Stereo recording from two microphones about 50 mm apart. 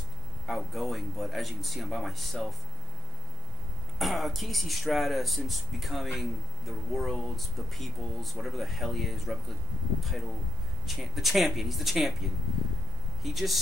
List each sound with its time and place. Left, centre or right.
0.5 s speech: centre
4.0 s speech: centre
13.2 s speech: centre